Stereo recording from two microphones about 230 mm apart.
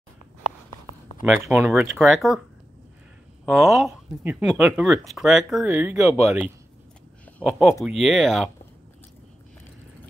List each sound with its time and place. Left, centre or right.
1.3 s speech: centre
3.4 s speech: centre
7.2 s a sound: centre
7.8 s speech: centre